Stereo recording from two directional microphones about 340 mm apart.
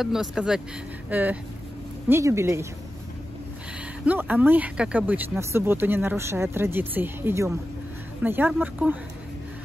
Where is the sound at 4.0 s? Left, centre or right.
Centre.